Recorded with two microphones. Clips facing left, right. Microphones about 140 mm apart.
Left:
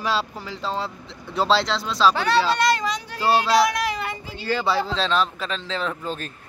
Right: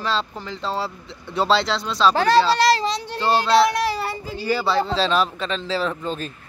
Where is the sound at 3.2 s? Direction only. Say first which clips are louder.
Right 1 dB; 5° left (ahead or behind).